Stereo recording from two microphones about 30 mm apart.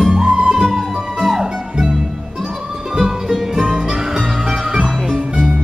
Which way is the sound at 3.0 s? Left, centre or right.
Centre.